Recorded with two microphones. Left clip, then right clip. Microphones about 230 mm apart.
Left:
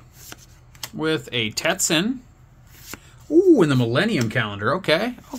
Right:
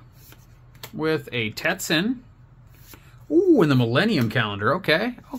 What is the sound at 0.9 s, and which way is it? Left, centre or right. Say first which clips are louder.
Speech: left 1 dB; centre.